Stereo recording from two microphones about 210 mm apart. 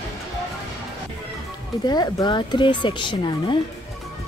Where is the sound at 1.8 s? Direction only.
20° left (ahead or behind).